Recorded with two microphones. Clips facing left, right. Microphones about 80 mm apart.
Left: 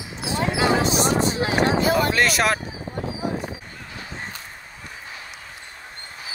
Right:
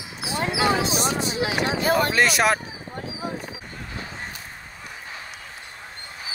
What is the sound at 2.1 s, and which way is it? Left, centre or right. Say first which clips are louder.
Speech: right 1 dB; centre.